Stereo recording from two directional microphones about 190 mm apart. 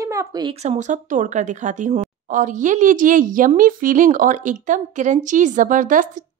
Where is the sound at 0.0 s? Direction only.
15° right (ahead or behind).